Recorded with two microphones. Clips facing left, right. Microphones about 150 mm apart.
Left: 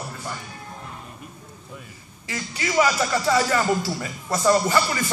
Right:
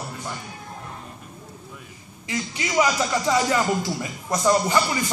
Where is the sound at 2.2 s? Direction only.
20° right (ahead or behind).